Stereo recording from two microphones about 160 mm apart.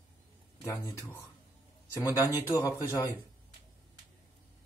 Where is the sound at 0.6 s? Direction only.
15° left (ahead or behind).